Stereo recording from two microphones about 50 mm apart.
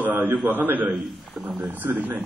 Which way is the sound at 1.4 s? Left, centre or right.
Centre.